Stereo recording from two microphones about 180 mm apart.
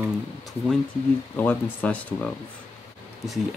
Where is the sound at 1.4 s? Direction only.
10° left (ahead or behind).